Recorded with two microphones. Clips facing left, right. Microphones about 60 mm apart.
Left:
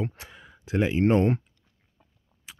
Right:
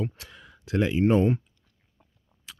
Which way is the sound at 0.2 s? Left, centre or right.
Centre.